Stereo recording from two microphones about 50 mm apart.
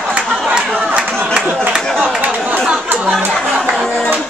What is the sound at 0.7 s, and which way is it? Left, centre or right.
Chatter, right.